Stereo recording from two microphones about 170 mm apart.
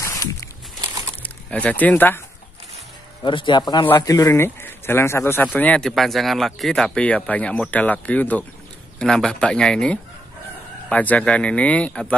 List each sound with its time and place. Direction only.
0.0 s a sound: 20° left (ahead or behind)
1.2 s speech: 10° left (ahead or behind)
3.3 s speech: 30° left (ahead or behind)
3.8 s speech: 15° left (ahead or behind)